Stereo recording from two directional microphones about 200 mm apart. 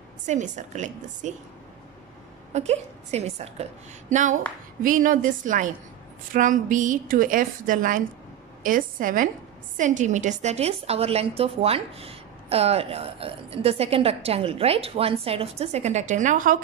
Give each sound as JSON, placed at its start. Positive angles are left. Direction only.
{"t": 0.3, "sound": "a woman's voice", "side_deg": -35}
{"t": 2.5, "sound": "a woman's voice", "side_deg": -30}